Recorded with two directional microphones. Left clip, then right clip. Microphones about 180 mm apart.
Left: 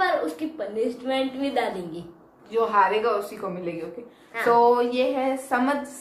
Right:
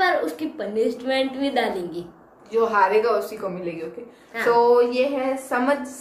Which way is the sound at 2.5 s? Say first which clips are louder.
Right 2 dB; centre (ahead or behind).